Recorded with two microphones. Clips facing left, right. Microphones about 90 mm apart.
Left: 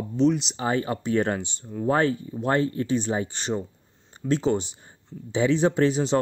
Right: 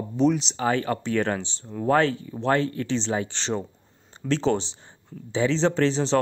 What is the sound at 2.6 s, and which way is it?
Speech, 30° left (ahead or behind).